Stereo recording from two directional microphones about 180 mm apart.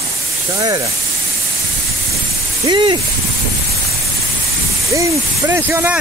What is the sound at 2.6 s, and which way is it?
Speech, 25° right (ahead or behind).